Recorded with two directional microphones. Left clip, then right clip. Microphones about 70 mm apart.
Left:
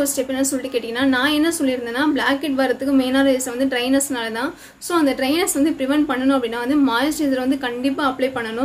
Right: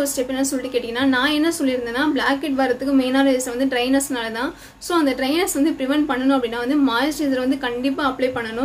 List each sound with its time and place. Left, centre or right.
0.0 s a woman's voice: left